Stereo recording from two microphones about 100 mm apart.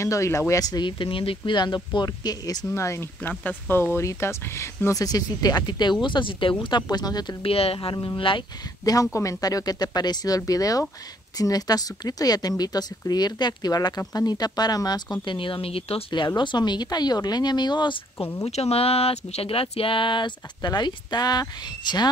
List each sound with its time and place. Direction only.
0.0 s speech: 30° left (ahead or behind)
2.7 s speech: 30° left (ahead or behind); by 7.3 s 45° left (ahead or behind)
7.4 s speech: 75° left (ahead or behind)
7.9 s speech: 50° left (ahead or behind)
8.8 s speech: 35° left (ahead or behind)
15.2 s speech: 60° left (ahead or behind)
16.3 s speech: 45° left (ahead or behind)
18.1 s speech: 30° left (ahead or behind)
18.4 s speech: 90° left; by 22.1 s 45° left (ahead or behind)